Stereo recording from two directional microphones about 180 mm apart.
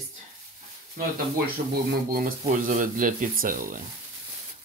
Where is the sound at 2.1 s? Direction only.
50° right (ahead or behind).